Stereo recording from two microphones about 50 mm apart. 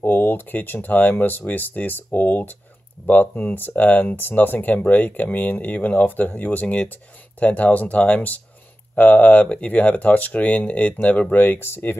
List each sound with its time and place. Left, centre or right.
0.0 s speech: left